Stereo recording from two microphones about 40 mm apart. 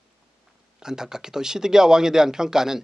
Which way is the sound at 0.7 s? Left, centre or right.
Centre.